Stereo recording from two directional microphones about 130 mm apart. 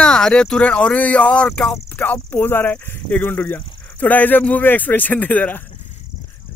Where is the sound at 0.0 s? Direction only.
5° left (ahead or behind).